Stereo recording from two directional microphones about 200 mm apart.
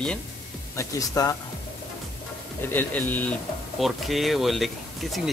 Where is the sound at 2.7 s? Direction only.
10° left (ahead or behind).